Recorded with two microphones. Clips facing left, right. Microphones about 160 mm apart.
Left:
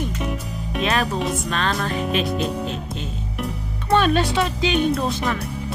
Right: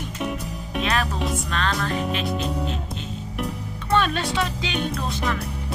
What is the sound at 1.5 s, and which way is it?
Music, 20° left (ahead or behind).